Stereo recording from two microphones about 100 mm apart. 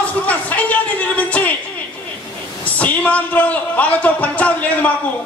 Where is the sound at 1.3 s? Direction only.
15° left (ahead or behind).